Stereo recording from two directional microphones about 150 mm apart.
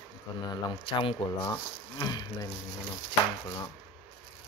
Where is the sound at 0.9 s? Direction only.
40° left (ahead or behind).